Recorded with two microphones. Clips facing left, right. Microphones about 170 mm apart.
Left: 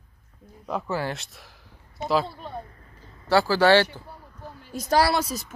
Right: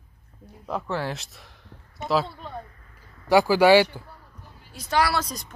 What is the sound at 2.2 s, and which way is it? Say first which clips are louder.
Speech: left 1 dB; 30° left (ahead or behind).